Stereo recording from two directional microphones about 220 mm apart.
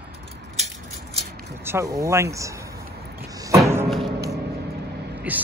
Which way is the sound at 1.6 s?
10° right (ahead or behind).